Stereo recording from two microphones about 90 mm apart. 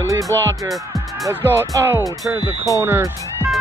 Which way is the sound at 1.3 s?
25° right (ahead or behind).